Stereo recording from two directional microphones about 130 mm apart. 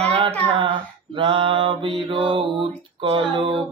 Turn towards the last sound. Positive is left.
turn(degrees=-40)  # may be behind; listen again after turning